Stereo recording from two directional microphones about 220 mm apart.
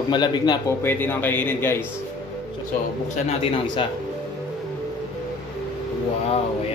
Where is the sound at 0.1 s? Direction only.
20° left (ahead or behind).